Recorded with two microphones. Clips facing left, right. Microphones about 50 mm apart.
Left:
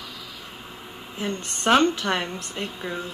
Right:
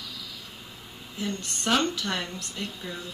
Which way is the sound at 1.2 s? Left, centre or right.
Left.